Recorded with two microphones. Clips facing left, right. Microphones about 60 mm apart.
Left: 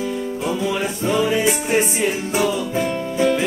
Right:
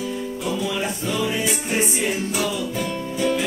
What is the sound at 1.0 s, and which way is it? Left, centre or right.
Music, left.